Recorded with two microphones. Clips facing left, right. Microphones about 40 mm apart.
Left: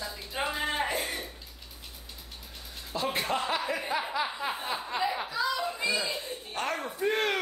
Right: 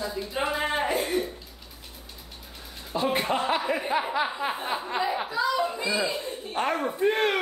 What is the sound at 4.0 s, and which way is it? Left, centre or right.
A woman's voice, right.